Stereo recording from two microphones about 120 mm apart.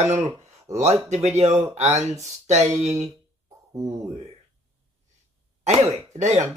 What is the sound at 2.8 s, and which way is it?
Speech, 75° right (ahead or behind).